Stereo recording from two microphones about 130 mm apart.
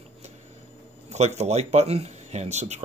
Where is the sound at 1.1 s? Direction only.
60° right (ahead or behind).